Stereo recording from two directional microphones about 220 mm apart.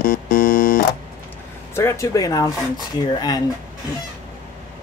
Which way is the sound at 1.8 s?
15° left (ahead or behind).